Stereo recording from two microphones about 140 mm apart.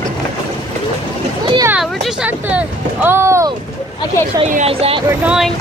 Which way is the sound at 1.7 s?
5° right (ahead or behind).